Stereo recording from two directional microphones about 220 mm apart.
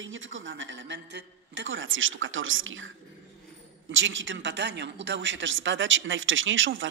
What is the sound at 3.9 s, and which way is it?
A woman's voice, 60° right (ahead or behind).